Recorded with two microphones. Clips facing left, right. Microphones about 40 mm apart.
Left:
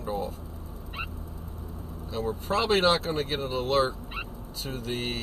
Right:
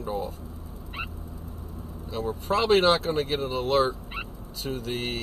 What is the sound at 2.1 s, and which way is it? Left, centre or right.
Speech, right.